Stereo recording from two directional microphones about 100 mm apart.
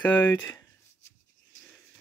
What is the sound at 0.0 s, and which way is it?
Speech, 20° left (ahead or behind).